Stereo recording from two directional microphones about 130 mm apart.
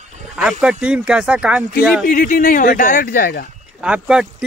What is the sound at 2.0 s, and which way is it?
Speech, 90° left.